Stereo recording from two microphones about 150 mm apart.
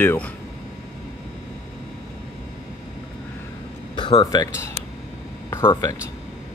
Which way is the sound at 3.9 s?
35° left (ahead or behind).